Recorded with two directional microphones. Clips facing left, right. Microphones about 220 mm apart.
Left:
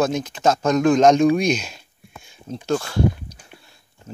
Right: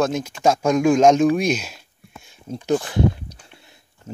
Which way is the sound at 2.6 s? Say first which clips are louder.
Right 1 dB; 20° right (ahead or behind).